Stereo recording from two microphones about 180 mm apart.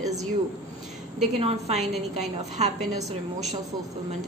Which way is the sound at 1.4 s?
35° right (ahead or behind).